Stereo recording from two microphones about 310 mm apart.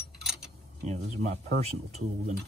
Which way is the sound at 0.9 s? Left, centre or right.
Right.